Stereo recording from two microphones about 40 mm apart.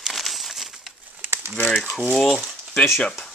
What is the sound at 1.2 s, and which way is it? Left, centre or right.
Crumpling, right.